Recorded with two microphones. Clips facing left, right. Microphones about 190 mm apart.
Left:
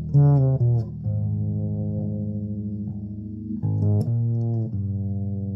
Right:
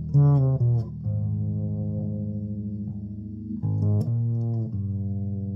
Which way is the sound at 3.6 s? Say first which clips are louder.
Left 2 dB; 45° left (ahead or behind).